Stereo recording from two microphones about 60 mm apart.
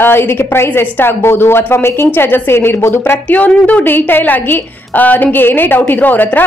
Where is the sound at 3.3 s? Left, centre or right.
Left.